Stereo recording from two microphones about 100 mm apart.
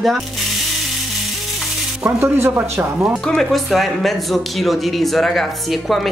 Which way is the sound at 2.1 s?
25° right (ahead or behind).